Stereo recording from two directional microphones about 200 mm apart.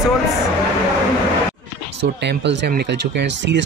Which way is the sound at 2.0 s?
60° right (ahead or behind).